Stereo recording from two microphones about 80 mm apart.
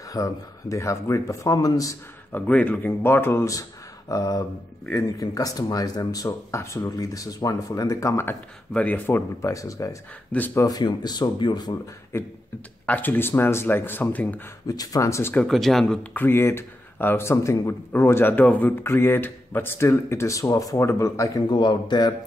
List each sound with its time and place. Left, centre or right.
0.1 s speech: left
2.3 s speech: centre
4.1 s speech: left
8.7 s speech: centre
9.1 s speech: left
10.3 s speech: centre
10.7 s speech: left
11.8 s speech: left
12.8 s speech: left
14.7 s speech: left
15.4 s speech: centre
15.8 s speech: centre; by 21.3 s left
21.5 s a man's voice: left